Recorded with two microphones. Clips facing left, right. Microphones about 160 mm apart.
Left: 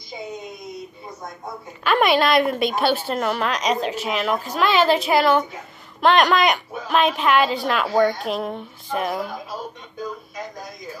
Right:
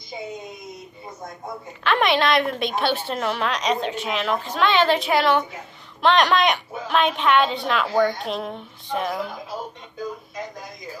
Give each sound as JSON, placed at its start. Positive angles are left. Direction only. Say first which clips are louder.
{"t": 1.9, "sound": "a woman's voice", "louder": "left 2 dB", "side_deg": 5}